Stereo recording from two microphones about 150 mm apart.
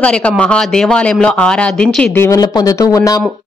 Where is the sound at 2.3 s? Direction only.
25° left (ahead or behind).